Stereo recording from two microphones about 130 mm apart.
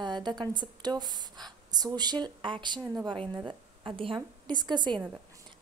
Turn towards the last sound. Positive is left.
turn(degrees=-35)  # may be behind; listen again after turning